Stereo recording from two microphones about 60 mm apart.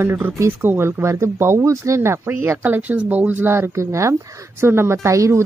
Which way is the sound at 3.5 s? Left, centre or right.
Right.